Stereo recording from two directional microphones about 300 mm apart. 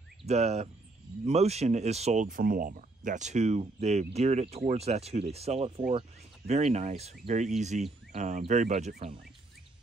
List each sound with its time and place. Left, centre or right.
0.3 s speech: right